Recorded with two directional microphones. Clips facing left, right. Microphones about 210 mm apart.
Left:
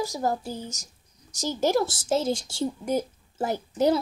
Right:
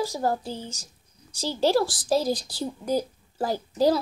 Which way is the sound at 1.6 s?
20° left (ahead or behind).